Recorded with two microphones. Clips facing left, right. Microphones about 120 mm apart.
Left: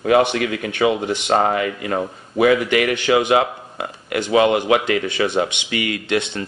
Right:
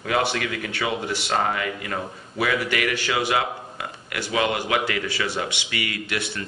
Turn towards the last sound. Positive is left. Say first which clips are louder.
# left 8 dB
turn(degrees=20)  # may be behind; listen again after turning